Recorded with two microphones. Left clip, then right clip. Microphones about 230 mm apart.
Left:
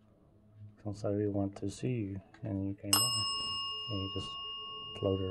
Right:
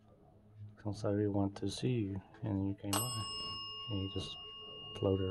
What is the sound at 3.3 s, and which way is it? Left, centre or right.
Bicycle bell, left.